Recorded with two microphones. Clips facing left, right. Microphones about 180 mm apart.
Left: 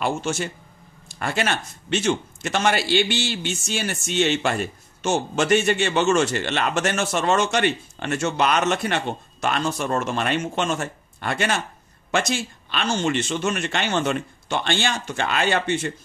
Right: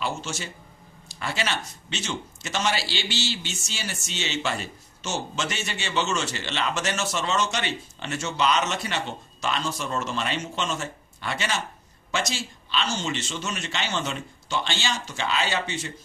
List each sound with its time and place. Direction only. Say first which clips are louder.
0.0 s speech: left 6 dB; 55° left (ahead or behind)